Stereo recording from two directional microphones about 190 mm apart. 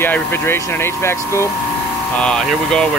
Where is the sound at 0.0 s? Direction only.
10° left (ahead or behind).